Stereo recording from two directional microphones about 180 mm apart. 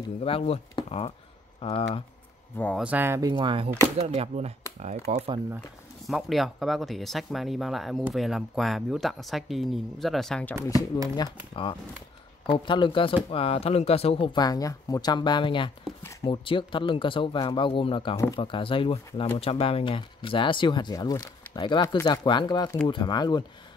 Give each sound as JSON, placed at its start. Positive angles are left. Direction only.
{"t": 0.2, "sound": "speech", "side_deg": 35}
{"t": 2.5, "sound": "speech", "side_deg": 10}
{"t": 2.8, "sound": "speech", "side_deg": -10}
{"t": 6.0, "sound": "speech", "side_deg": 0}
{"t": 11.1, "sound": "speech", "side_deg": 30}
{"t": 16.0, "sound": "speech", "side_deg": 15}
{"t": 16.3, "sound": "speech", "side_deg": 30}